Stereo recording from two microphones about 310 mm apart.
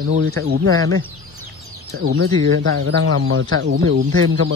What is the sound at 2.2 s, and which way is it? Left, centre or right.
Speech, right.